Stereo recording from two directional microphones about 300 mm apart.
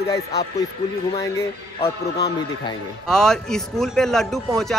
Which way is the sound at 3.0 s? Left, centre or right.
Centre.